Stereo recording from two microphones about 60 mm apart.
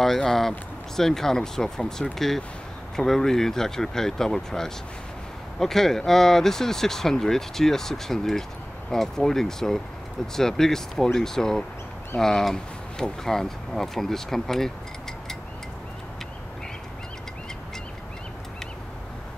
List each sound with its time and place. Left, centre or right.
0.0 s speech: centre